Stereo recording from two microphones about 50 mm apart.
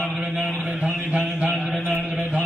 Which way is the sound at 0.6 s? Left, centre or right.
Right.